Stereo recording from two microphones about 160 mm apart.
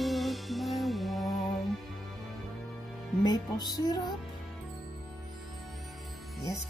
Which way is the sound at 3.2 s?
25° left (ahead or behind).